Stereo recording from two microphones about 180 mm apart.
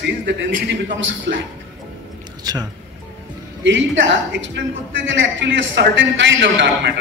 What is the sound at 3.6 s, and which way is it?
A woman's voice, 90° right.